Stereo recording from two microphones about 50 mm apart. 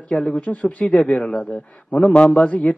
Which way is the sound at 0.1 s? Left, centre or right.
Left.